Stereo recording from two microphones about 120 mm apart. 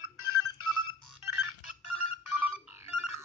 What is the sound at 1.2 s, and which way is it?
Telephone dialing, 20° right (ahead or behind).